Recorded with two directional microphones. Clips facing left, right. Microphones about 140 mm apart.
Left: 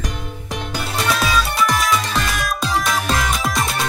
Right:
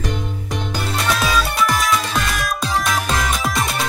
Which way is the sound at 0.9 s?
Centre (ahead or behind).